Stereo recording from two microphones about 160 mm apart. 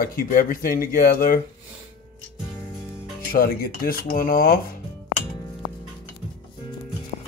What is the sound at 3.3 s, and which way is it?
Speech, 65° left (ahead or behind).